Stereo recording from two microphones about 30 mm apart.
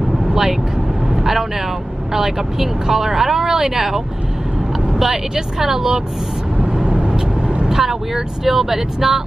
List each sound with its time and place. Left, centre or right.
0.3 s vehicle: centre
2.1 s speech: centre
6.6 s vehicle: right
7.7 s speech: centre